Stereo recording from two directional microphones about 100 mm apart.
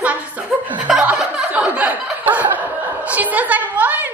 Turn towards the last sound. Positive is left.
turn(degrees=-15)  # may be behind; listen again after turning